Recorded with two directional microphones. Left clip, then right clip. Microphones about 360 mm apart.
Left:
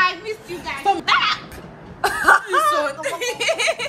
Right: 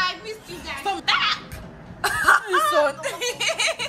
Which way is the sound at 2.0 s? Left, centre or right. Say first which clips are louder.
Left 3 dB; centre.